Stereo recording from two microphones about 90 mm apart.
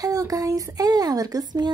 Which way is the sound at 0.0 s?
40° right (ahead or behind).